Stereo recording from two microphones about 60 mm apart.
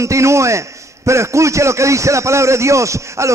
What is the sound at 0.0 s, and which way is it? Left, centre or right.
A man's voice, right.